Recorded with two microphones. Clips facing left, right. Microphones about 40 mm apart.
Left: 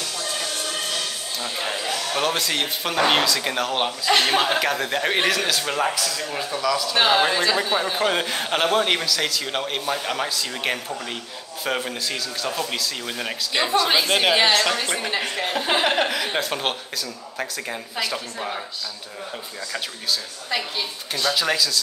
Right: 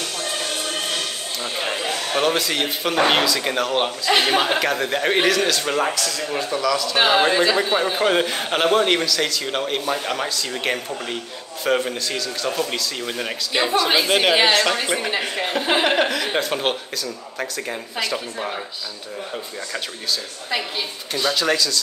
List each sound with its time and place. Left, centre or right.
1.4 s speech: centre
2.1 s a man's voice: centre
7.0 s a man's voice: centre
19.7 s a man's voice: centre